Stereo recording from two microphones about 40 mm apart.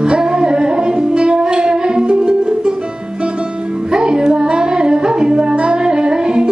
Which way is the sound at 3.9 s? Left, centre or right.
Right.